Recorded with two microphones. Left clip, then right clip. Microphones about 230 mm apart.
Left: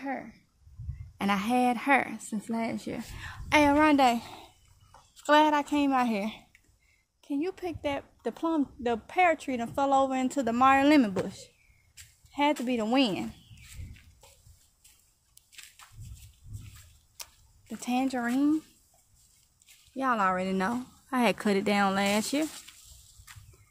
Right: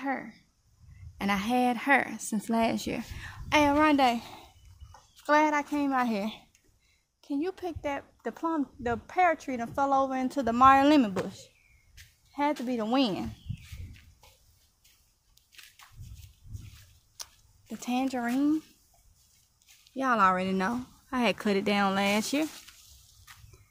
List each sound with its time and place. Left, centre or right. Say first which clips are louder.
0.0 s speech: right 3 dB; centre
1.1 s speech: left 1 dB; centre
2.2 s speech: right 5 dB; centre
3.1 s speech: left 3 dB; centre
6.1 s speech: even; centre
12.0 s a sound: left 1 dB; left
12.6 s speech: left 1 dB; centre
17.2 s a sound: right 1 dB; centre
20.0 s speech: right 2 dB; centre